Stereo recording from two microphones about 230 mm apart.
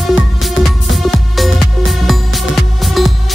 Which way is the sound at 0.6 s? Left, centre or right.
Left.